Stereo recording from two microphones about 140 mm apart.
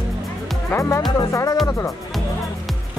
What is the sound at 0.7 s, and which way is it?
Speech, 20° left (ahead or behind).